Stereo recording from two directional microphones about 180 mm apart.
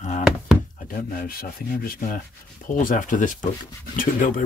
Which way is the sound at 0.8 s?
55° left (ahead or behind).